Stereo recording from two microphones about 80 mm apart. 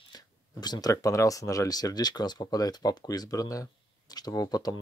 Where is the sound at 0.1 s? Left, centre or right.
Left.